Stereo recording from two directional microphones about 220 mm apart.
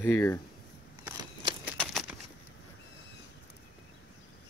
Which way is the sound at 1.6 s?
Centre (ahead or behind).